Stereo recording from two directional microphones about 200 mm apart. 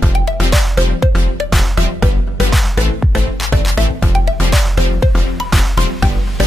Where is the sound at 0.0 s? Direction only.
Centre (ahead or behind).